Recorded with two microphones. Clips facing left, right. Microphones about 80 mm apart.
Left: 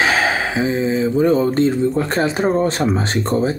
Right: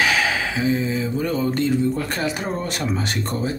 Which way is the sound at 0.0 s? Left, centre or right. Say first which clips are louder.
Left 3 dB; left.